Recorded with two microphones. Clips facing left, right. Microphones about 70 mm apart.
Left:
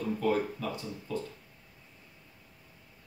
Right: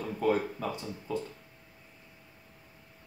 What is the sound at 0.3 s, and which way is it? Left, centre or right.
Speech, right.